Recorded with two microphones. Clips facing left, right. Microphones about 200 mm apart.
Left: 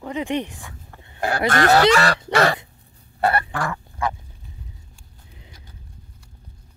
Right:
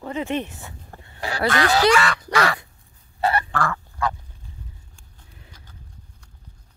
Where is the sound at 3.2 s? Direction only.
55° left (ahead or behind).